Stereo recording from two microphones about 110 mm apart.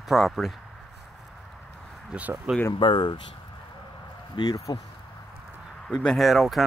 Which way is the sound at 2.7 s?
45° left (ahead or behind).